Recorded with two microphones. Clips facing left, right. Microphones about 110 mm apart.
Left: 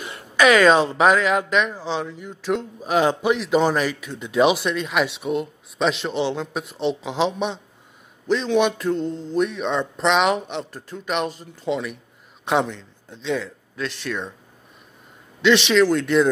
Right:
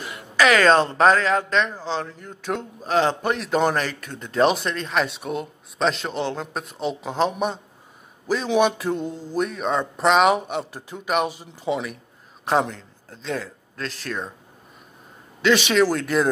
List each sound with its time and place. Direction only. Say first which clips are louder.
0.0 s a sound: left 2 dB; 20° left (ahead or behind)
0.7 s a man's voice: even; 5° left (ahead or behind); by 11.8 s 10° right (ahead or behind)
12.4 s a man's voice: even; centre (ahead or behind)
15.4 s a man's voice: left 2 dB; 5° right (ahead or behind)